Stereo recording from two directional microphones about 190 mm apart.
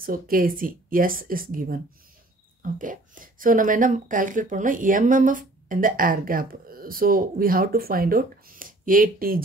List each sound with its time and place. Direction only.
0.0 s speech: 50° right (ahead or behind)